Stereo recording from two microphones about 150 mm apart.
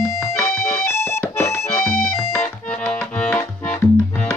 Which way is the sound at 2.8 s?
15° left (ahead or behind).